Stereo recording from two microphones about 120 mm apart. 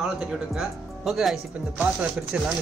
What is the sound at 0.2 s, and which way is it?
Speech, 5° right (ahead or behind).